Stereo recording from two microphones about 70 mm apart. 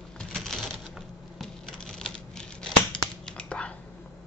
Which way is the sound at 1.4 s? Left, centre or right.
Centre.